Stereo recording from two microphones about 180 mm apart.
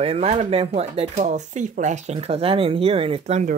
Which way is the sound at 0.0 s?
35° right (ahead or behind).